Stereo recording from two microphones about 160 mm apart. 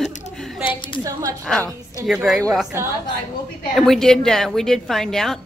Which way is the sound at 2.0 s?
Centre (ahead or behind).